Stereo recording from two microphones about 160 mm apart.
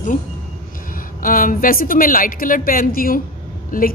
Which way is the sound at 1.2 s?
60° left (ahead or behind).